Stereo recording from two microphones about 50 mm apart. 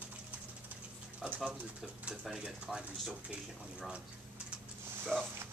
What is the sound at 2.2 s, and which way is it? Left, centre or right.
Speech, centre.